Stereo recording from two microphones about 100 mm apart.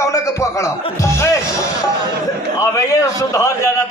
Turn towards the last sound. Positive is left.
turn(degrees=30)  # may be behind; listen again after turning